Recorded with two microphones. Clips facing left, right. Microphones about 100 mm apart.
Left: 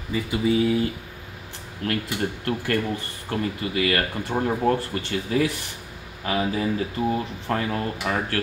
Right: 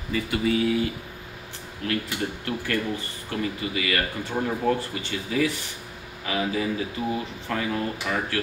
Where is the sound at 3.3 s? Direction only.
45° left (ahead or behind).